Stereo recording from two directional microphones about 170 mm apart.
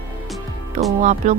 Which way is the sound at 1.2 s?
40° right (ahead or behind).